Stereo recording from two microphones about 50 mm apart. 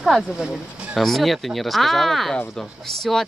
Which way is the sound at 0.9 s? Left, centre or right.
Centre.